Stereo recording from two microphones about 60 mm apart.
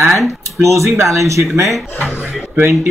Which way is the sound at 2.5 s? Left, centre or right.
Right.